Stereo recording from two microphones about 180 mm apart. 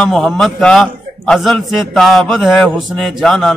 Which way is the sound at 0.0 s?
5° left (ahead or behind).